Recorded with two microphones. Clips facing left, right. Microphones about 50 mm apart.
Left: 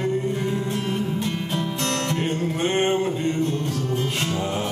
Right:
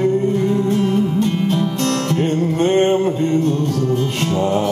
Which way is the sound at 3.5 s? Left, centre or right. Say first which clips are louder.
Right 7 dB; left.